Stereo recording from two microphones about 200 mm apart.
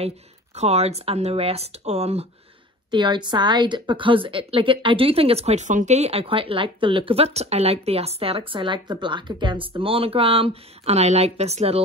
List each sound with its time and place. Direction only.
0.6 s a woman's voice: 30° right (ahead or behind)